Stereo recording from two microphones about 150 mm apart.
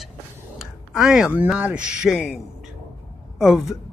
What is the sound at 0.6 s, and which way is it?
Speech, centre (ahead or behind).